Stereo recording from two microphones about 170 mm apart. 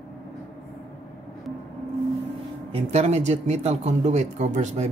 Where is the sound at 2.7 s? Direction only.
35° right (ahead or behind).